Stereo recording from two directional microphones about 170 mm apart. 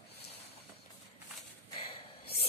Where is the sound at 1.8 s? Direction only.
35° left (ahead or behind).